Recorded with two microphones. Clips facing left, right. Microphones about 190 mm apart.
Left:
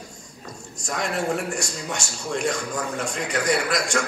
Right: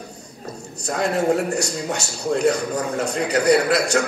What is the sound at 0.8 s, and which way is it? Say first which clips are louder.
A man's voice: right 6 dB; 35° right (ahead or behind).